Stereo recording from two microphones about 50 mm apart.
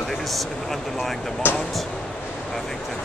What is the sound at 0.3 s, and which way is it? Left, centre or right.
Speech, centre.